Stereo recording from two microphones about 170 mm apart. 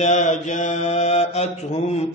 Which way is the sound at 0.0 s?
45° left (ahead or behind).